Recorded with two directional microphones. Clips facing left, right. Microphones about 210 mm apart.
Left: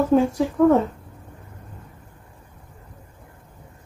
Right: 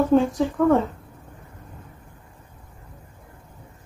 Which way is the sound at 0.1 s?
10° left (ahead or behind).